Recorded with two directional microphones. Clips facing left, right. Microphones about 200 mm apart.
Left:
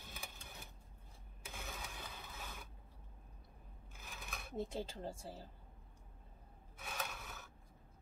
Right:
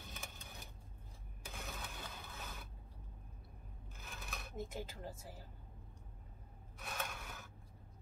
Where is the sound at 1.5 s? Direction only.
Centre (ahead or behind).